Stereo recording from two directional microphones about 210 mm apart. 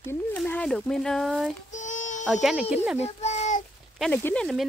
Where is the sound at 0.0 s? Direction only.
10° left (ahead or behind).